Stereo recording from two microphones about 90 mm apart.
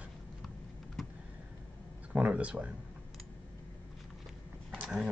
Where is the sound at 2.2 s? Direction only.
15° right (ahead or behind).